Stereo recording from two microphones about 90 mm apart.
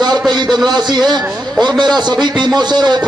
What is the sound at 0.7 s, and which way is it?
A man's voice, 55° right (ahead or behind).